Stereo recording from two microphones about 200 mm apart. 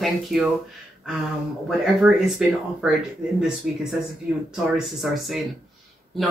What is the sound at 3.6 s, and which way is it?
Speech, 45° right (ahead or behind).